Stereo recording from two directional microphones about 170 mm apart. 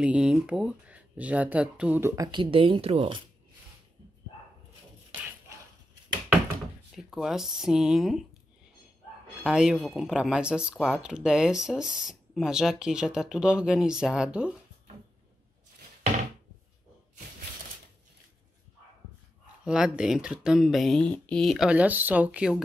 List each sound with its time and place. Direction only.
0.0 s speech: 5° right (ahead or behind)
2.4 s a woman's voice: 30° right (ahead or behind)
7.0 s speech: centre (ahead or behind)
9.4 s speech: 5° right (ahead or behind)
19.6 s speech: 5° right (ahead or behind)